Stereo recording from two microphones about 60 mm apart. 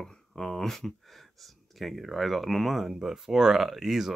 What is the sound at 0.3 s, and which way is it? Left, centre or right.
Speech, centre.